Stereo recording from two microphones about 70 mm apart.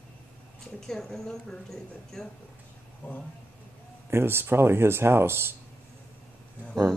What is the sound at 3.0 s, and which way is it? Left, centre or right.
Speech, left.